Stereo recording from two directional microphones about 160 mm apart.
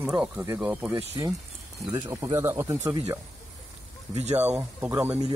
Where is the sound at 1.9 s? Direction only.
20° right (ahead or behind).